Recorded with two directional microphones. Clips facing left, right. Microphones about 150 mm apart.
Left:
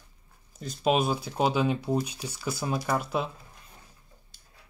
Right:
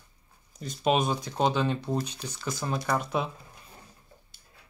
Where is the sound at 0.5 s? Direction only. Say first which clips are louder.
Even; centre (ahead or behind).